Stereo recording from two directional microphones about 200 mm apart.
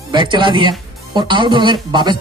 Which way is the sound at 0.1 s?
25° right (ahead or behind).